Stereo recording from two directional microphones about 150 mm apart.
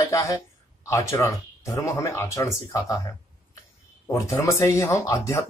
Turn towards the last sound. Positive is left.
turn(degrees=20)  # may be behind; listen again after turning